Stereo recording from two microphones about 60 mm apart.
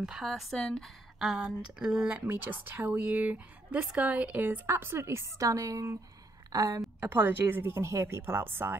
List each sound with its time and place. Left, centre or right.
0.2 s speech: centre
1.2 s speech: centre
2.0 s speech: right
4.6 s a woman's voice: right
6.5 s a woman's voice: right
7.0 s a woman's voice: right
8.2 s a woman's voice: right